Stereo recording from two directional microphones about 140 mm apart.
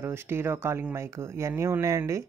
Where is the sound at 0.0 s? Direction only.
15° right (ahead or behind).